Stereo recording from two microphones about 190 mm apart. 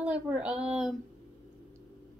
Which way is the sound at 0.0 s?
5° right (ahead or behind).